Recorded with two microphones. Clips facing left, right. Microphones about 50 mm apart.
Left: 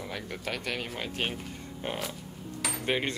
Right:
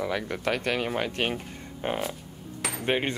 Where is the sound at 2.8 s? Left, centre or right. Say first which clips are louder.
Right 3 dB; right.